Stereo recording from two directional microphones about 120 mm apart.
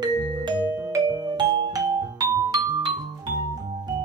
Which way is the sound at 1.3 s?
40° right (ahead or behind).